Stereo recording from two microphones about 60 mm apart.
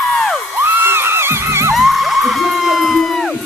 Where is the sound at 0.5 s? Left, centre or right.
Right.